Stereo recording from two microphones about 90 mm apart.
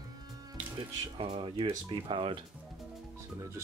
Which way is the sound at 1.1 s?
90° right.